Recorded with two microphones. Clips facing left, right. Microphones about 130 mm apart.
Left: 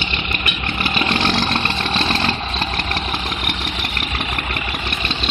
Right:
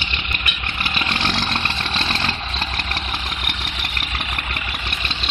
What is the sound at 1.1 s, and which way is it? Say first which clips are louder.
Vehicle: left 4 dB; centre (ahead or behind).